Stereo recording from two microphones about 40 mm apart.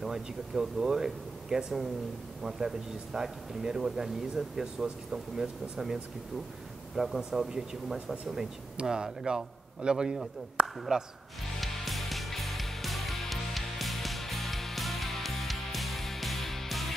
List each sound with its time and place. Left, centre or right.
0.1 s speech: centre
7.0 s speech: centre
11.6 s music: centre